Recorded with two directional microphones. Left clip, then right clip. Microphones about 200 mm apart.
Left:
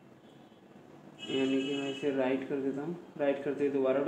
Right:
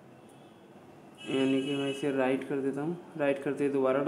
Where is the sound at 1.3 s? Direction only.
30° right (ahead or behind).